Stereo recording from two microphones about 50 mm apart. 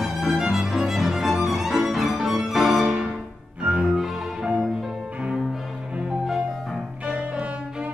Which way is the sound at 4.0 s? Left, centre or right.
Centre.